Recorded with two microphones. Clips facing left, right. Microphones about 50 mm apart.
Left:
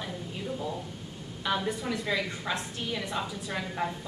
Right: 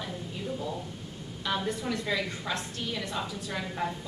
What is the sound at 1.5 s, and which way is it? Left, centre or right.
A woman's voice, centre.